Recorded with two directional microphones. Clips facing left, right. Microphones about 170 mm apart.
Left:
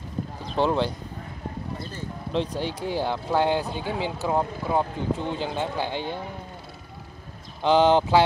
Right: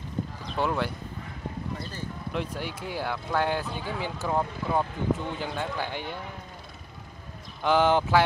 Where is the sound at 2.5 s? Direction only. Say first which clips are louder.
Left 6 dB; 30° left (ahead or behind).